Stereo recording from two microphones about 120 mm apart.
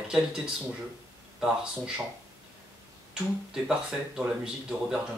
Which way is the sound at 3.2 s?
5° right (ahead or behind).